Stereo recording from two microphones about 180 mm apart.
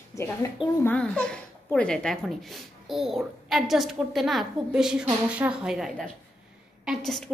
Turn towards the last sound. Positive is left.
turn(degrees=0)  # may be behind; listen again after turning